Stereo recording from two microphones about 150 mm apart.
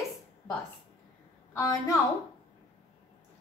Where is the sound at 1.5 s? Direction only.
20° left (ahead or behind).